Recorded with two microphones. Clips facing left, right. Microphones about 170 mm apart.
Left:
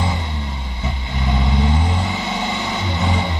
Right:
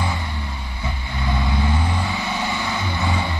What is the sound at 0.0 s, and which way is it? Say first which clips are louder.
Vehicle: left 2 dB; 20° left (ahead or behind).